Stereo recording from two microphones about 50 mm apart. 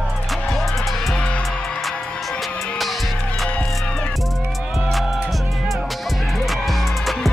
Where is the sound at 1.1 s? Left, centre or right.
Left.